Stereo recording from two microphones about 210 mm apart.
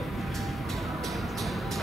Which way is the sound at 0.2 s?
Centre (ahead or behind).